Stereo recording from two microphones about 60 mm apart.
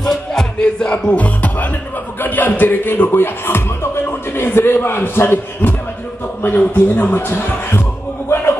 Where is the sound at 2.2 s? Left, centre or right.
Left.